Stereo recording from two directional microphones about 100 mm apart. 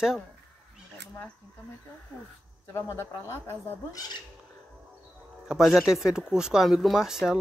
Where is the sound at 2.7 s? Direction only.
25° left (ahead or behind).